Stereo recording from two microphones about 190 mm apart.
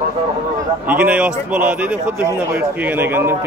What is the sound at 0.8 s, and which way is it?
A man's voice, 10° right (ahead or behind).